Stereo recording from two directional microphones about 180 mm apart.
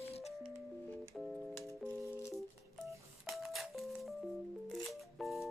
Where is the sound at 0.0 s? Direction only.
35° left (ahead or behind).